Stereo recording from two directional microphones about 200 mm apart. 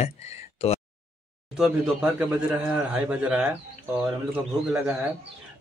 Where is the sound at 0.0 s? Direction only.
30° left (ahead or behind).